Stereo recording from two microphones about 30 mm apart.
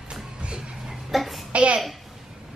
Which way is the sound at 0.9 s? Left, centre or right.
Centre.